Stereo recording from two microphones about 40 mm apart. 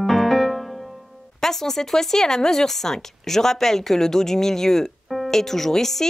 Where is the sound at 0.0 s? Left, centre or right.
Centre.